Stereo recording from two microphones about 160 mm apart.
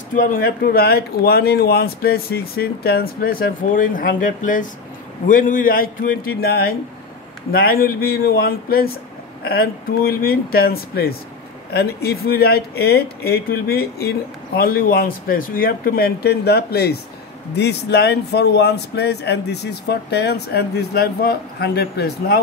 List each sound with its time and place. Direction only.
0.1 s speech: 60° left (ahead or behind); by 22.4 s 90° left